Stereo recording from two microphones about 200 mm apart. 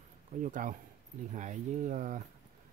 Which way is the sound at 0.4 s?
40° right (ahead or behind).